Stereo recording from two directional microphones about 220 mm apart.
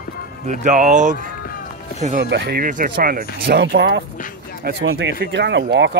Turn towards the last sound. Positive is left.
turn(degrees=-50)  # may be behind; listen again after turning